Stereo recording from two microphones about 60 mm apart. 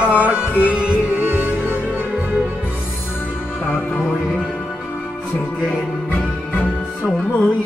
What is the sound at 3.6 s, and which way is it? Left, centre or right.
Music, left.